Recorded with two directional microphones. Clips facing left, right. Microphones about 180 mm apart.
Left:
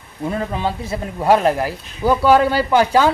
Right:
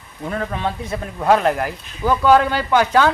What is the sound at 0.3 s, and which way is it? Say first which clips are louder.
Speech: left 1 dB; 20° left (ahead or behind).